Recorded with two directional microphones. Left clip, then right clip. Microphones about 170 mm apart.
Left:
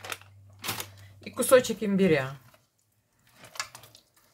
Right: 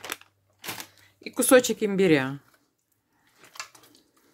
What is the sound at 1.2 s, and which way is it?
Speech, 65° right (ahead or behind).